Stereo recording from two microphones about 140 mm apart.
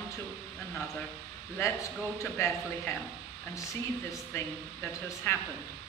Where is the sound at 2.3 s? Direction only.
20° left (ahead or behind).